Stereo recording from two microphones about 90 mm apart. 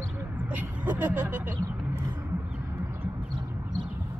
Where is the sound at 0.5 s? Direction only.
20° right (ahead or behind).